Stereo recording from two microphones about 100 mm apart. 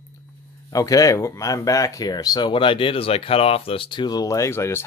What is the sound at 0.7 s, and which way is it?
Speech, 35° left (ahead or behind).